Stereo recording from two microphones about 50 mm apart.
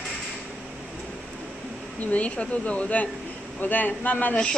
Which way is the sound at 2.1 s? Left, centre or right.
Left.